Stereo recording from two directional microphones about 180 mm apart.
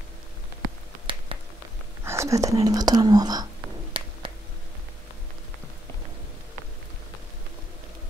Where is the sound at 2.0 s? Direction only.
15° right (ahead or behind).